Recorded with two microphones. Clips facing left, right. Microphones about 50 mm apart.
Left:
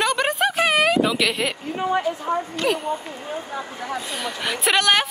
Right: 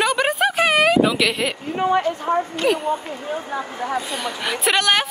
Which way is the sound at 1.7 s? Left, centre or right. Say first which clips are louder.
Right 5 dB; right.